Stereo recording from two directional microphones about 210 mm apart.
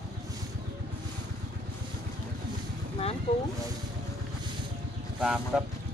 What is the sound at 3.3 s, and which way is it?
Speech, 30° left (ahead or behind).